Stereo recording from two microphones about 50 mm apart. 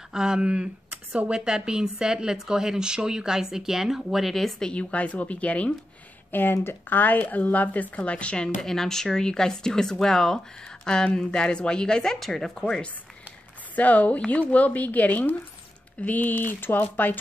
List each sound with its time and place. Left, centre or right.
0.1 s a woman's voice: centre
4.6 s speech: left
6.3 s speech: left; by 12.2 s centre
12.2 s speech: centre
13.7 s speech: left